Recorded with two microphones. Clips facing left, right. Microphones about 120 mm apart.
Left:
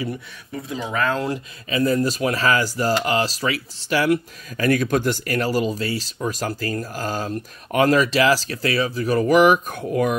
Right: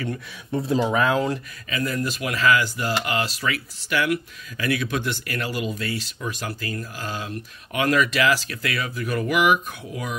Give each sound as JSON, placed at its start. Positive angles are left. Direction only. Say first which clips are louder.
{"t": 0.5, "sound": "speech", "louder": "right 7 dB", "side_deg": -30}
{"t": 0.9, "sound": "speech", "louder": "left 2 dB", "side_deg": -15}
{"t": 1.7, "sound": "speech", "louder": "left 7 dB", "side_deg": 30}